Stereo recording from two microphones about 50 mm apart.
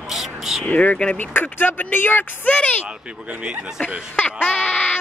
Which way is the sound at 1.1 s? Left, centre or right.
Left.